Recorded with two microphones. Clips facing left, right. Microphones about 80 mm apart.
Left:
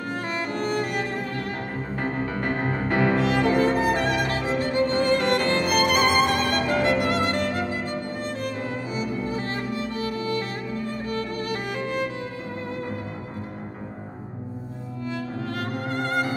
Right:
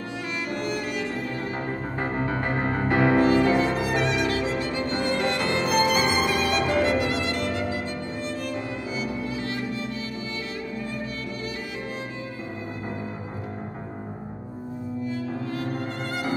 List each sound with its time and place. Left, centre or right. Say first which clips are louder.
0.5 s music: left 2 dB; left
2.0 s music: even; centre
3.2 s music: right 3 dB; left
3.5 s violin: left 2 dB; left
8.2 s music: left 1 dB; left
11.1 s music: left 5 dB; left
15.5 s music: left 1 dB; left